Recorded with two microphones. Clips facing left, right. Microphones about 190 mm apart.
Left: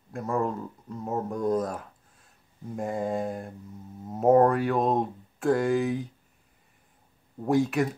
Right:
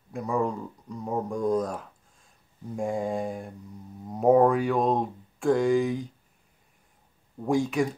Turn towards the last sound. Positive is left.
turn(degrees=5)  # may be behind; listen again after turning